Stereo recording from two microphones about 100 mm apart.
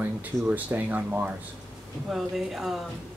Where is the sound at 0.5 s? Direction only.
15° right (ahead or behind).